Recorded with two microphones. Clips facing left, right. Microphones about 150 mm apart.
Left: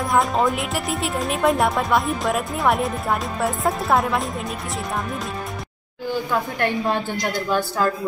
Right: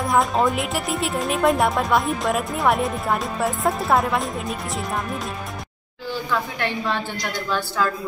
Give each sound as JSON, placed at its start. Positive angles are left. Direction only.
{"t": 0.0, "sound": "a woman's voice", "side_deg": 0}
{"t": 6.3, "sound": "a woman's voice", "side_deg": 45}